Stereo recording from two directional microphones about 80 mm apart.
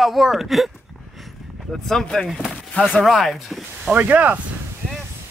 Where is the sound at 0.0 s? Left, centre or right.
Centre.